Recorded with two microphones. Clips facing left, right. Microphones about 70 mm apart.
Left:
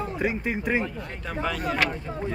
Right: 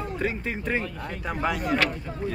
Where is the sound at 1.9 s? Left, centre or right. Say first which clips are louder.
Left 1 dB; left.